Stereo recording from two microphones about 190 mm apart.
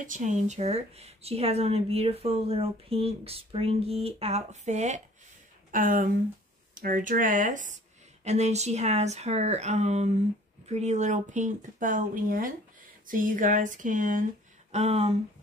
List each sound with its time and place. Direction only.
0.0 s speech: 40° right (ahead or behind)